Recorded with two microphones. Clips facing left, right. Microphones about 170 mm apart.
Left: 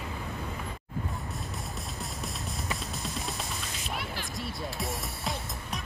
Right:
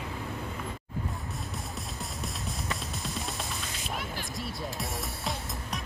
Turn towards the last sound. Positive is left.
turn(degrees=0)  # may be behind; listen again after turning